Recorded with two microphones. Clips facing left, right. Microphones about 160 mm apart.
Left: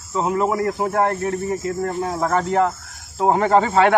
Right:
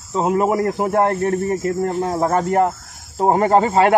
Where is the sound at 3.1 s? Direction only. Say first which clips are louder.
Right 1 dB; 40° right (ahead or behind).